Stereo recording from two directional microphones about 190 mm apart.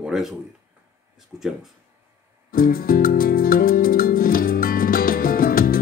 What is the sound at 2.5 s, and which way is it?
Music, 50° left (ahead or behind).